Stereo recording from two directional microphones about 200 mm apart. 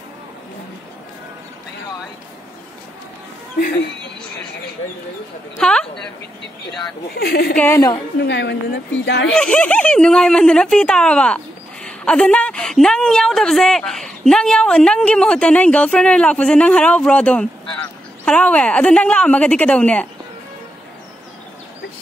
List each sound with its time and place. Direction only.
5.6 s speech: 5° left (ahead or behind)
7.2 s speech: 50° left (ahead or behind)
7.5 s a woman's voice: 10° left (ahead or behind)
8.2 s a woman's voice: 60° left (ahead or behind)
9.3 s speech: 5° left (ahead or behind)